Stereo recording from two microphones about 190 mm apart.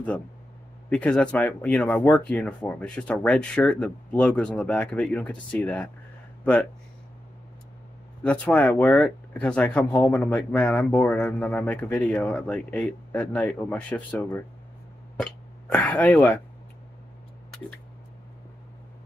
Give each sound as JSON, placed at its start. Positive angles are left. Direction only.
{"t": 0.8, "sound": "speech", "side_deg": 5}
{"t": 8.2, "sound": "speech", "side_deg": 5}
{"t": 15.7, "sound": "speech", "side_deg": 5}